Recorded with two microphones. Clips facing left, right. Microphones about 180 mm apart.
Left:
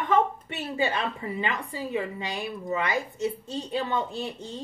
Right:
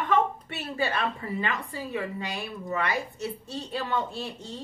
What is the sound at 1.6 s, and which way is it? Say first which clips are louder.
A woman's voice: left 2 dB; 20° left (ahead or behind).